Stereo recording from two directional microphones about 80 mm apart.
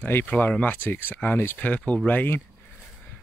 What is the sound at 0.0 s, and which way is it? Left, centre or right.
Speech, left.